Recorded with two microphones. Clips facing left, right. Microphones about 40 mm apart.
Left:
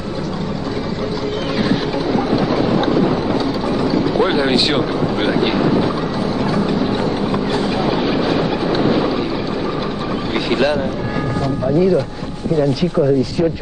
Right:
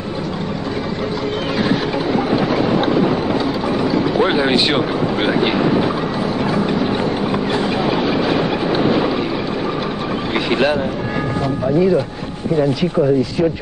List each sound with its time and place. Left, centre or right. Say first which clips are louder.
1.6 s boat: even; centre
2.5 s vehicle: even; centre
6.4 s a sound: even; right
7.5 s vehicle: even; centre
8.0 s train: even; centre
8.3 s boat: even; centre
10.3 s vehicle: even; centre